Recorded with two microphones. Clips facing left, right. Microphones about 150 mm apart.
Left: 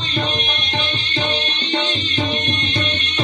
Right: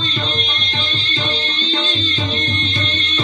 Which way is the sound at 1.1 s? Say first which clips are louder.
Left 2 dB; 65° left (ahead or behind).